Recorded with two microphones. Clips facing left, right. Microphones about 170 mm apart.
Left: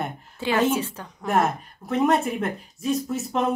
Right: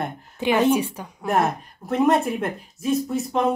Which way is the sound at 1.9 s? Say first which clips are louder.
Right 2 dB; centre (ahead or behind).